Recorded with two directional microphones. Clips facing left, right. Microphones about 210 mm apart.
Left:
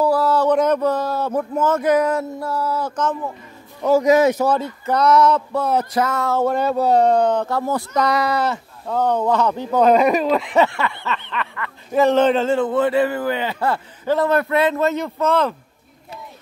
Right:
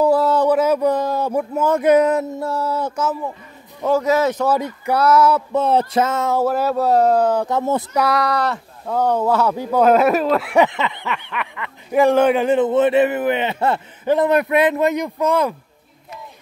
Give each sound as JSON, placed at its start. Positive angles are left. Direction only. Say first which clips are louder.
{"t": 0.0, "sound": "a sound", "louder": "right 2 dB", "side_deg": -20}
{"t": 0.5, "sound": "speech", "louder": "right 1 dB", "side_deg": -5}
{"t": 4.0, "sound": "speech", "louder": "left 3 dB", "side_deg": 15}
{"t": 4.6, "sound": "speech", "louder": "right 1 dB", "side_deg": -15}
{"t": 5.5, "sound": "a sound", "louder": "right 3 dB", "side_deg": -25}
{"t": 6.4, "sound": "speech", "louder": "left 2 dB", "side_deg": -5}
{"t": 7.4, "sound": "a sound", "louder": "right 2 dB", "side_deg": -20}
{"t": 7.9, "sound": "speech", "louder": "left 2 dB", "side_deg": -5}
{"t": 8.9, "sound": "speech", "louder": "right 1 dB", "side_deg": -10}